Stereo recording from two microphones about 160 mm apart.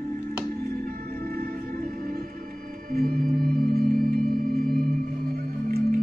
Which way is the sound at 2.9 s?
65° right (ahead or behind).